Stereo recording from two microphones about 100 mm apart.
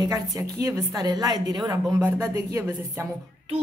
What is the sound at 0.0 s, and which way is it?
A woman's voice, 35° right (ahead or behind).